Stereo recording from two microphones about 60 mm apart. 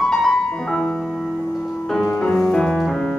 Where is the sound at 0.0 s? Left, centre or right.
Centre.